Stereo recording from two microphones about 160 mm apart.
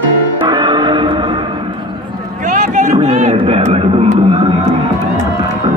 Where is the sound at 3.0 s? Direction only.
45° right (ahead or behind).